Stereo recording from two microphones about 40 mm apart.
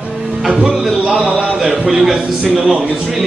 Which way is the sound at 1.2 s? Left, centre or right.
Centre.